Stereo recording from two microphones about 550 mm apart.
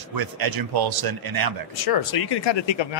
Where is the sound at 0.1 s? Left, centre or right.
Right.